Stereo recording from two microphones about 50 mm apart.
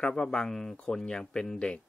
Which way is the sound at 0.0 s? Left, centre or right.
Centre.